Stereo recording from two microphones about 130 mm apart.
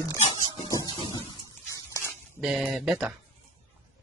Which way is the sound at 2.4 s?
5° right (ahead or behind).